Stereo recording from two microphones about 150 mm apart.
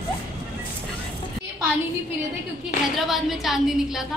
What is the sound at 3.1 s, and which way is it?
Speech, centre (ahead or behind).